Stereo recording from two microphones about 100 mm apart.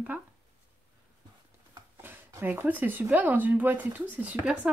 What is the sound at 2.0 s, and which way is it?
Speech, 20° right (ahead or behind).